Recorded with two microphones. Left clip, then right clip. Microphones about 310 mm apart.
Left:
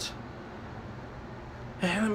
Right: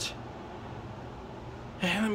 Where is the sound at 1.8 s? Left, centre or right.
Centre.